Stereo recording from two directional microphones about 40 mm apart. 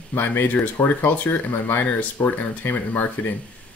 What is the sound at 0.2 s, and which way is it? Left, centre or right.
Speech, left.